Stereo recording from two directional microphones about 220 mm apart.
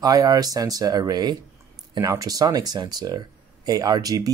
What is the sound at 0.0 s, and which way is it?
Speech, 15° right (ahead or behind).